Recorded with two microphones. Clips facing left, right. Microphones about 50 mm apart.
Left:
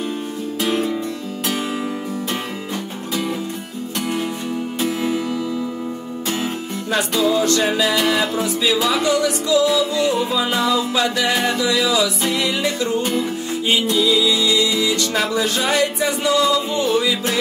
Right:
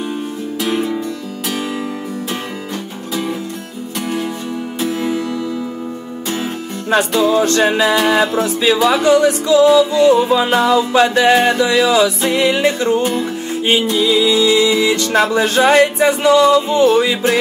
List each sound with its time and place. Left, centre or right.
0.7 s music: centre
4.7 s music: centre
7.2 s music: right
8.5 s speech: right
8.7 s music: right